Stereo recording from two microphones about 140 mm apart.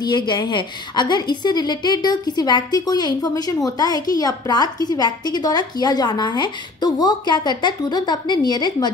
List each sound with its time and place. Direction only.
0.3 s a woman's voice: 35° left (ahead or behind)